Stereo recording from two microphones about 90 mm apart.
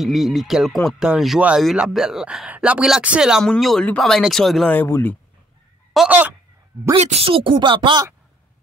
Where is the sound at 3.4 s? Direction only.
5° left (ahead or behind).